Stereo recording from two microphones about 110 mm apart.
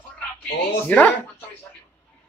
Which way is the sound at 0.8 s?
15° left (ahead or behind).